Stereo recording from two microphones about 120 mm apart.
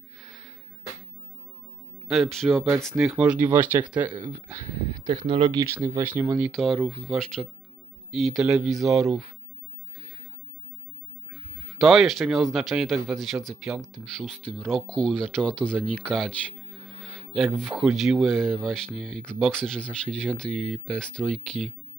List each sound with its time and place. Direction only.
0.2 s a sound: 5° right (ahead or behind)
2.0 s speech: centre (ahead or behind)
4.8 s speech: 40° right (ahead or behind)
5.9 s speech: 20° right (ahead or behind)
6.5 s speech: 5° left (ahead or behind)
11.8 s speech: 5° right (ahead or behind)
16.7 s music: centre (ahead or behind)
17.6 s speech: centre (ahead or behind)